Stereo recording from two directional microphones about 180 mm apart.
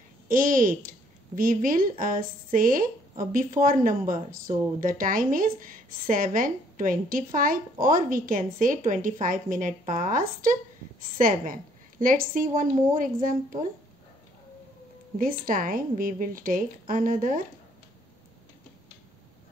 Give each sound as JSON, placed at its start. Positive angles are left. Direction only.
{"t": 0.3, "sound": "speech", "side_deg": -50}
{"t": 15.1, "sound": "speech", "side_deg": -50}